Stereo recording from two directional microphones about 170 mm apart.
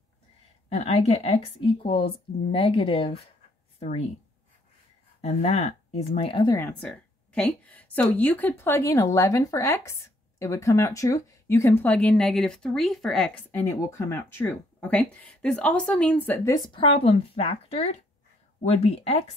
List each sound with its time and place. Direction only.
0.7 s speech: 40° left (ahead or behind)
5.2 s speech: 40° left (ahead or behind)
6.5 s a woman's voice: 10° left (ahead or behind)
13.9 s a woman's voice: 15° left (ahead or behind)
16.5 s speech: 30° left (ahead or behind)